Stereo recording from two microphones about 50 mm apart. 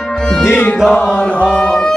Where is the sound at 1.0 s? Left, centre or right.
Left.